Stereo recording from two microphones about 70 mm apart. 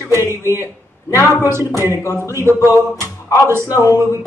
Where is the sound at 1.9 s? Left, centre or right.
Left.